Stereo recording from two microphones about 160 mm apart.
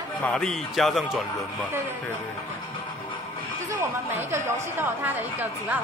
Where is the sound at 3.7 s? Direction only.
15° right (ahead or behind).